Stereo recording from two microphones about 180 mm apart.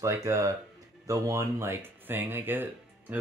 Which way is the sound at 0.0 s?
20° right (ahead or behind).